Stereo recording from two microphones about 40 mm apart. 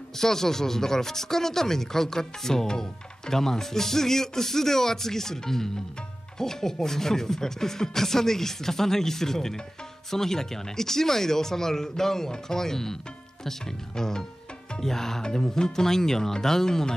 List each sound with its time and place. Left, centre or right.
0.2 s speech: centre